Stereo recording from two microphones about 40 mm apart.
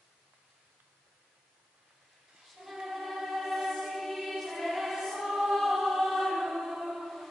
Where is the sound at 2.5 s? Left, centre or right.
Centre.